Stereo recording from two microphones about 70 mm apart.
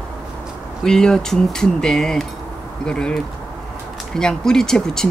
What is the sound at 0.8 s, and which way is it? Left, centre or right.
Speech, centre.